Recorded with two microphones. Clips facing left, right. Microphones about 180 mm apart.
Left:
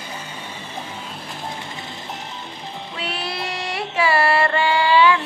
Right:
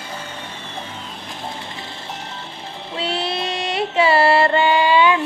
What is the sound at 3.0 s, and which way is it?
Music, 25° right (ahead or behind).